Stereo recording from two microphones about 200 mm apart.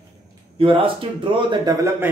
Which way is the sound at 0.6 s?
25° right (ahead or behind).